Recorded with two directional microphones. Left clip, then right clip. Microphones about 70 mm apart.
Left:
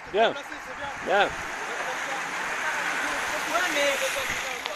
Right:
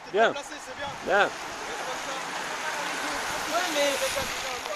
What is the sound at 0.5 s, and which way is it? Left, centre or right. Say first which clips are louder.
Speech: left 1 dB; right.